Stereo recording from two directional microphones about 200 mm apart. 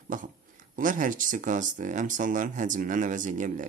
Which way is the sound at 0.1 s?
40° right (ahead or behind).